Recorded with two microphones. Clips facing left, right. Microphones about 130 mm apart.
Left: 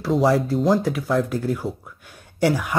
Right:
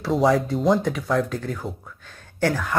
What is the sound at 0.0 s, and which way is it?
Speech, centre (ahead or behind).